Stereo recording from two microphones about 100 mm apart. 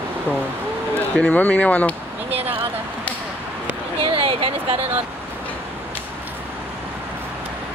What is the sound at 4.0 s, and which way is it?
Speech, 65° right (ahead or behind).